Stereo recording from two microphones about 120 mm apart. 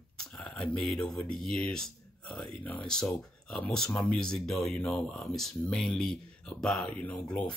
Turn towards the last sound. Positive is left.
turn(degrees=10)  # may be behind; listen again after turning